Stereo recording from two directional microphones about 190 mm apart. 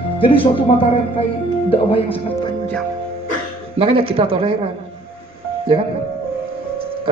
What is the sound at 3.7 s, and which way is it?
Speech, 30° right (ahead or behind).